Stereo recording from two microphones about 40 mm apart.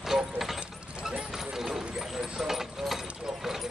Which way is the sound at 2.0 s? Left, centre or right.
Centre.